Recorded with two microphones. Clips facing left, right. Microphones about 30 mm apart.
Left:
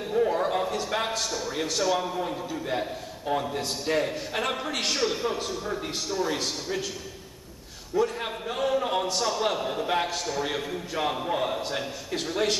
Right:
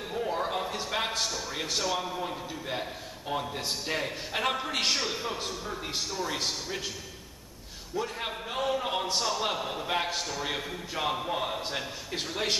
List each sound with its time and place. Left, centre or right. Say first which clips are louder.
0.1 s a sound: left 6 dB; centre
1.2 s a man's voice: left 3 dB; centre
6.4 s a man's voice: left 3 dB; centre
7.9 s a man's voice: left 6 dB; centre